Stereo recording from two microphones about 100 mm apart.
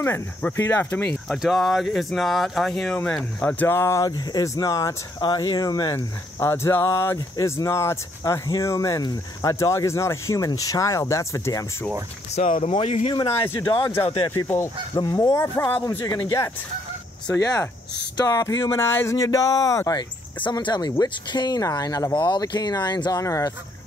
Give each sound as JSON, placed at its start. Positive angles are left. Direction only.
{"t": 0.0, "sound": "speech", "side_deg": 20}
{"t": 1.3, "sound": "speech", "side_deg": 0}
{"t": 3.3, "sound": "speech", "side_deg": 15}
{"t": 3.6, "sound": "speech", "side_deg": 25}
{"t": 5.2, "sound": "speech", "side_deg": 50}
{"t": 5.9, "sound": "speech", "side_deg": 25}
{"t": 12.4, "sound": "speech", "side_deg": 90}
{"t": 14.0, "sound": "speech", "side_deg": 55}
{"t": 14.3, "sound": "speech", "side_deg": 30}
{"t": 15.0, "sound": "speech", "side_deg": 45}
{"t": 15.3, "sound": "speech", "side_deg": 30}
{"t": 17.4, "sound": "speech", "side_deg": 35}
{"t": 20.4, "sound": "speech", "side_deg": 45}